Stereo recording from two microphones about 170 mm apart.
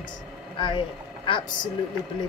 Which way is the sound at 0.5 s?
30° left (ahead or behind).